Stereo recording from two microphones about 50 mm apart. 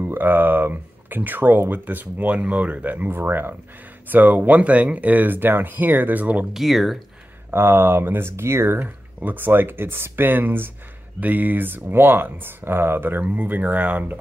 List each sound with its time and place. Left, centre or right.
0.0 s speech: right
6.5 s speech: centre
7.5 s speech: right
8.7 s speech: right
11.1 s speech: right
13.2 s speech: right